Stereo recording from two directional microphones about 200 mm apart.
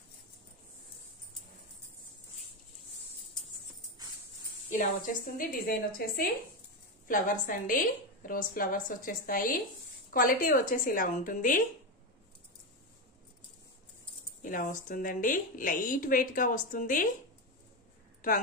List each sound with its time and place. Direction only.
4.7 s a woman's voice: 40° left (ahead or behind)
14.4 s a woman's voice: 40° left (ahead or behind)
18.2 s a woman's voice: 45° left (ahead or behind)